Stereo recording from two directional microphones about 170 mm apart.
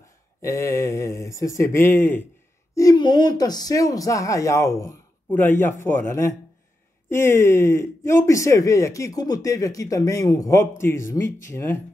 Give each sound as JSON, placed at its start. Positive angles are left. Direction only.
{"t": 0.4, "sound": "speech", "side_deg": 15}